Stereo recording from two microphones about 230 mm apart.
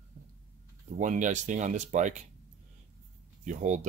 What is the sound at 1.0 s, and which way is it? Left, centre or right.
Speech, right.